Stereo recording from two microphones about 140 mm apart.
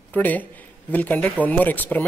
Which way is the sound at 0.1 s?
10° left (ahead or behind).